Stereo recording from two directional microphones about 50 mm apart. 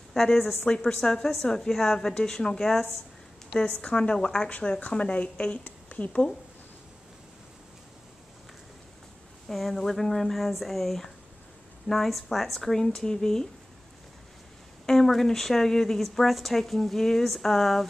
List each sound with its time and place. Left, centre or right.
0.1 s a woman's voice: centre
3.9 s a woman's voice: centre
4.5 s a woman's voice: left
9.5 s a woman's voice: centre
14.9 s a woman's voice: centre